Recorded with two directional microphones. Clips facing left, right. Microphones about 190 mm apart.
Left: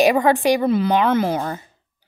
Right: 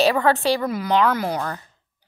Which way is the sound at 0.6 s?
25° left (ahead or behind).